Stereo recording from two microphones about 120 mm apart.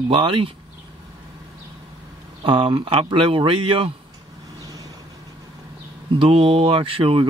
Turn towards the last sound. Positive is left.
turn(degrees=-50)  # may be behind; listen again after turning